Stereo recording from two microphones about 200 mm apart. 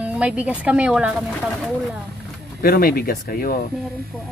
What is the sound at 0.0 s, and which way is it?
A woman's voice, 5° right (ahead or behind).